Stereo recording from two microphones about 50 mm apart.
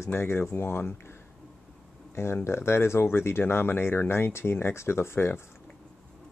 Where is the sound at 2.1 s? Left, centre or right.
Left.